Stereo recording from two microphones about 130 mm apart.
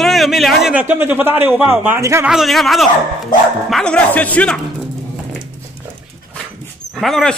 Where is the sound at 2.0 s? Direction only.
20° right (ahead or behind).